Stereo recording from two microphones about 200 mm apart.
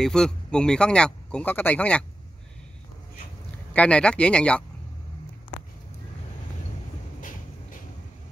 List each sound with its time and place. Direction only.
0.0 s speech: 5° left (ahead or behind)
3.7 s speech: 5° left (ahead or behind)
7.2 s vehicle: 40° left (ahead or behind)